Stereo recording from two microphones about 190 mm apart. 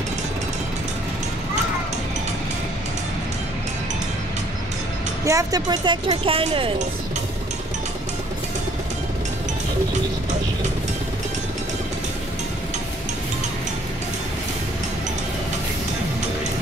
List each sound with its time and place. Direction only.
5.2 s speech: 15° right (ahead or behind)